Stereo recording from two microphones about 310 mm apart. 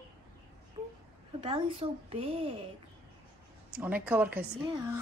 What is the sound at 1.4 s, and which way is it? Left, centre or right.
A woman's voice, centre.